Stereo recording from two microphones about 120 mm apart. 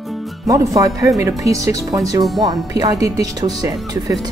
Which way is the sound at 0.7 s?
30° right (ahead or behind).